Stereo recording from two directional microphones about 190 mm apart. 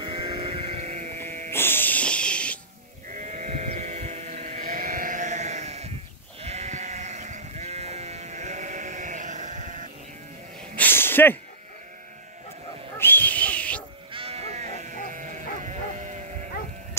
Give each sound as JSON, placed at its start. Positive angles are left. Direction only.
{"t": 0.0, "sound": "sheep", "side_deg": -30}
{"t": 1.5, "sound": "music", "side_deg": 10}
{"t": 3.1, "sound": "sheep", "side_deg": -40}
{"t": 10.8, "sound": "a sound", "side_deg": 10}
{"t": 12.9, "sound": "dog", "side_deg": 10}
{"t": 14.1, "sound": "sheep", "side_deg": -30}